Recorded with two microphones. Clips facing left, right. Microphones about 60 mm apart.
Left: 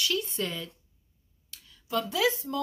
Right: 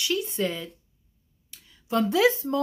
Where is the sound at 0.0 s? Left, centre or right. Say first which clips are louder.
Right 4 dB; centre.